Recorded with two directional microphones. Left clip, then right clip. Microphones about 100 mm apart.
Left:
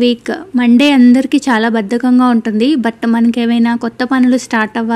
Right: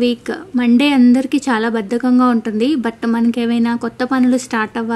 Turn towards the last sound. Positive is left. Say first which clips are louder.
# left 4 dB
turn(degrees=30)  # may be behind; listen again after turning